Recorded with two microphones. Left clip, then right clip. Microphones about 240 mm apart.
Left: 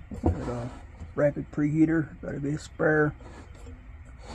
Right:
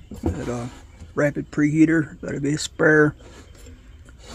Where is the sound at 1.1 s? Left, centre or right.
Right.